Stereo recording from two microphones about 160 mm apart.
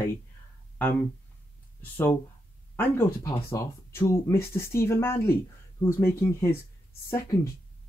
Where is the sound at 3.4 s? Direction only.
15° left (ahead or behind).